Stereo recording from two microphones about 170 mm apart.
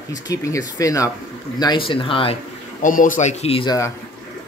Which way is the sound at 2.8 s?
50° left (ahead or behind).